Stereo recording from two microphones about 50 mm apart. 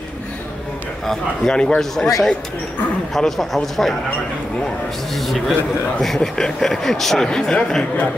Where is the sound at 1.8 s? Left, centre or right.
Centre.